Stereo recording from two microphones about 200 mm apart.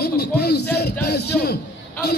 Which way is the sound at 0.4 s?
55° left (ahead or behind).